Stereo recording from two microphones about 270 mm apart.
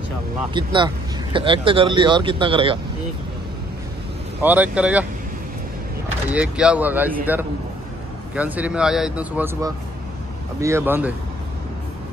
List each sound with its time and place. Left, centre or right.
0.7 s speech: centre
4.4 s speech: centre
6.3 s speech: centre